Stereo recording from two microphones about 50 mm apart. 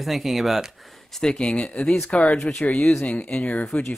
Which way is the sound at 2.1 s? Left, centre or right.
Left.